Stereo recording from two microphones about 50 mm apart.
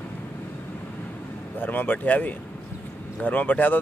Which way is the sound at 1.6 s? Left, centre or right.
Left.